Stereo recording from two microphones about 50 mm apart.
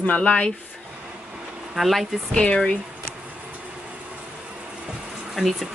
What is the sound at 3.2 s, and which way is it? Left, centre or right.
Train, right.